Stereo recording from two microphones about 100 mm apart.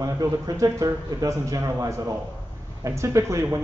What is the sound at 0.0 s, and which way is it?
Speech, 35° right (ahead or behind).